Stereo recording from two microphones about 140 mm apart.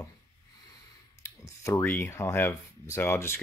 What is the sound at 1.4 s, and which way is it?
Speech, 20° left (ahead or behind).